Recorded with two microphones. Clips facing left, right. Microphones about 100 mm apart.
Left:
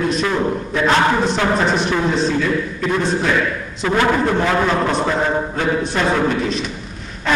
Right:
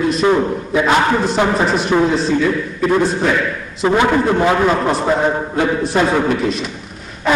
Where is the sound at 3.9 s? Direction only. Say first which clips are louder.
Right 3 dB; 20° right (ahead or behind).